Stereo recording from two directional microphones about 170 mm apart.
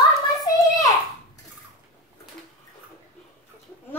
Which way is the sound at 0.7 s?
20° left (ahead or behind).